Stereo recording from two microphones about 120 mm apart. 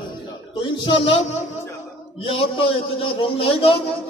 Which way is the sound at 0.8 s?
50° left (ahead or behind).